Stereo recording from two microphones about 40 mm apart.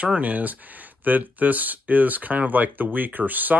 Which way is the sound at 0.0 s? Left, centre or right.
Right.